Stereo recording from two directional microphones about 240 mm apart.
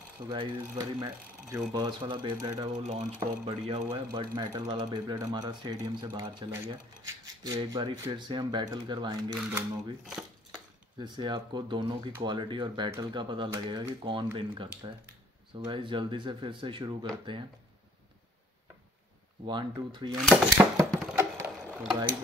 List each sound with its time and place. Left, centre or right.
0.3 s speech: centre
10.5 s speech: centre
19.4 s speech: centre
20.9 s a sound: centre